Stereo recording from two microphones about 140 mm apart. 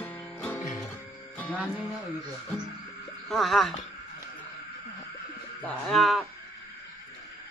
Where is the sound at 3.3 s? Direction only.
Centre (ahead or behind).